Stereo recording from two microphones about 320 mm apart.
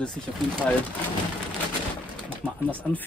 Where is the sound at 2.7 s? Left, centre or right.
Centre.